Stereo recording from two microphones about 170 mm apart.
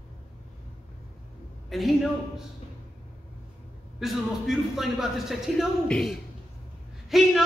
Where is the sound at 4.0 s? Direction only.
Centre (ahead or behind).